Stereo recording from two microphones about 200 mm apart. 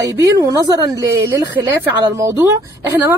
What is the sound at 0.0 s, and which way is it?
A woman's voice, 15° right (ahead or behind).